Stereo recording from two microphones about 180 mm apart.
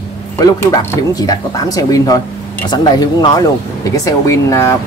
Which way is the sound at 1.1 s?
20° left (ahead or behind).